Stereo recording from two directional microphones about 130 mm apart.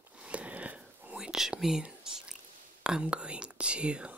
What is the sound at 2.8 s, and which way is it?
Speech, 5° right (ahead or behind).